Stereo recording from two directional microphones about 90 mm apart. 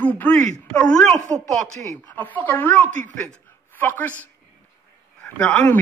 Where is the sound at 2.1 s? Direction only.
20° left (ahead or behind).